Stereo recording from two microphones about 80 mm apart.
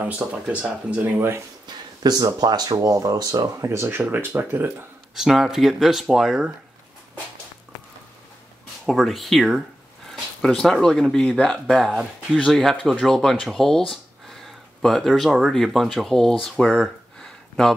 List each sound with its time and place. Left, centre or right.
0.0 s speech: centre
1.7 s speech: right
2.7 s speech: right
5.1 s speech: centre
8.8 s speech: centre
11.6 s speech: centre
17.2 s a sound: centre